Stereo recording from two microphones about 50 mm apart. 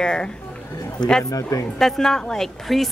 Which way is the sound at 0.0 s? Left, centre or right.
Centre.